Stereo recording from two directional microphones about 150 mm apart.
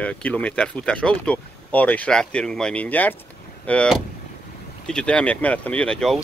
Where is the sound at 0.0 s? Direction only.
10° left (ahead or behind).